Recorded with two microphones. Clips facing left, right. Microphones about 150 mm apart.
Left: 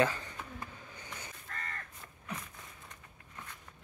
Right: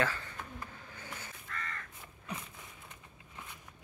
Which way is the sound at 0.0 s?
15° left (ahead or behind).